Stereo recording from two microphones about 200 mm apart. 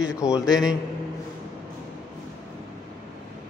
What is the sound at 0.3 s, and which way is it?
Speech, 5° right (ahead or behind).